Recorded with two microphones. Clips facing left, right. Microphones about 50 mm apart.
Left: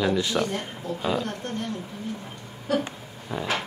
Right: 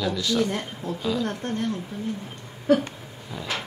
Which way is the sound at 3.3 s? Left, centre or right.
Left.